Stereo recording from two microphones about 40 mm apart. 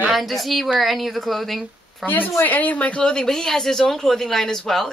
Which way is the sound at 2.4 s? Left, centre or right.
Left.